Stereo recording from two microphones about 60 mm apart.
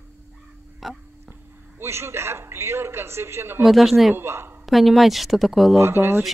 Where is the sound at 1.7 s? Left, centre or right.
Right.